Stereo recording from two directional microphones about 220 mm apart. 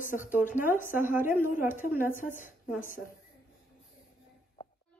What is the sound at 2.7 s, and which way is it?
Speech, 40° left (ahead or behind).